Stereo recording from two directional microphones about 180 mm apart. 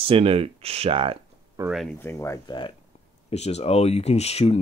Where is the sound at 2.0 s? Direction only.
15° left (ahead or behind).